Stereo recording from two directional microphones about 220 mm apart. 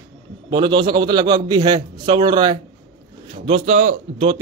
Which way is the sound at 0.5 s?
20° right (ahead or behind).